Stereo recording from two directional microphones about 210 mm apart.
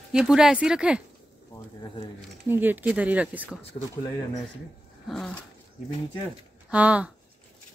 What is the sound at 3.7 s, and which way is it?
Speech, 25° left (ahead or behind).